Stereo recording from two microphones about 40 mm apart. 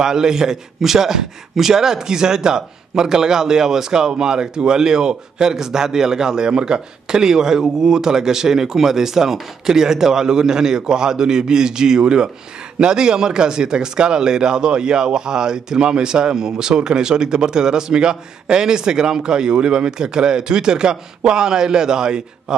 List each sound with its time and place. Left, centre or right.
0.0 s a man's voice: centre